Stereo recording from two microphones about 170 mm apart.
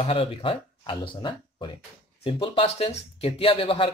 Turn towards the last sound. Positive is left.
turn(degrees=30)  # may be behind; listen again after turning